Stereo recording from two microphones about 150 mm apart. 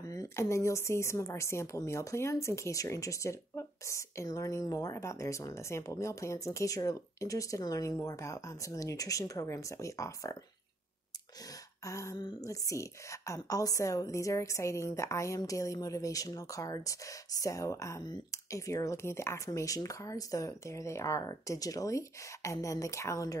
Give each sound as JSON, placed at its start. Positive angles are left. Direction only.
{"t": 0.0, "sound": "speech", "side_deg": 20}
{"t": 11.4, "sound": "speech", "side_deg": 20}